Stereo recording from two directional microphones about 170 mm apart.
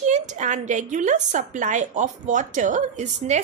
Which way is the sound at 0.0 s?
45° right (ahead or behind).